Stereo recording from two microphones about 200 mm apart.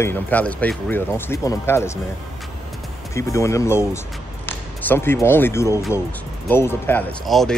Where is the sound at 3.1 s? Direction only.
15° left (ahead or behind).